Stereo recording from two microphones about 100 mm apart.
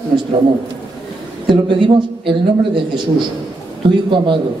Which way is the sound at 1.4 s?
55° right (ahead or behind).